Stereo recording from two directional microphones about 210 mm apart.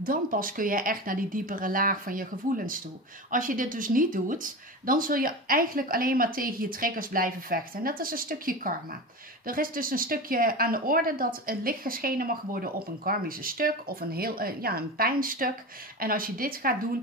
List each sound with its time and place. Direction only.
0.0 s speech: 40° right (ahead or behind)